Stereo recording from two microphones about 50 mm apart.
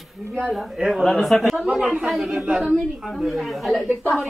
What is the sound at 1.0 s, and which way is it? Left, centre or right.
Speech, centre.